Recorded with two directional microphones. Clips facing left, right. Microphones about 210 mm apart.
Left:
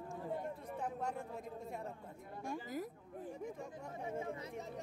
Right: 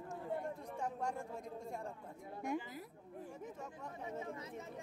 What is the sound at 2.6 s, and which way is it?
Speech, 45° left (ahead or behind).